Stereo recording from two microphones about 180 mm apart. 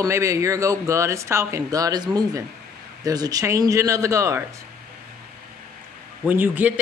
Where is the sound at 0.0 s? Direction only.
15° right (ahead or behind).